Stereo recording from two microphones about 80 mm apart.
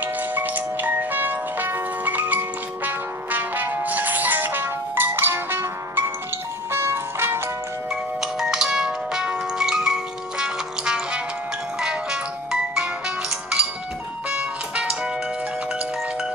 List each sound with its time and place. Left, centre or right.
0.0 s music: right
7.9 s music: centre